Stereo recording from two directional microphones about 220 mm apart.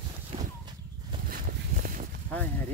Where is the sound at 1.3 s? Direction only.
40° right (ahead or behind).